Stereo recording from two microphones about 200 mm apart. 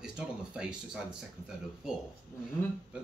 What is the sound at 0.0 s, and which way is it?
Speech, 5° right (ahead or behind).